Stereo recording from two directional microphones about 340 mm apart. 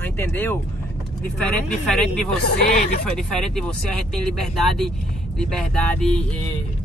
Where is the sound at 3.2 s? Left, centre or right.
Centre.